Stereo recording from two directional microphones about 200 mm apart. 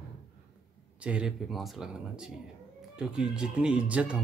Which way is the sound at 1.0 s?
5° right (ahead or behind).